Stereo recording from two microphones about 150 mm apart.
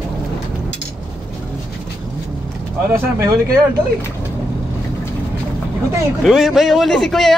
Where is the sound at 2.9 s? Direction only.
20° right (ahead or behind).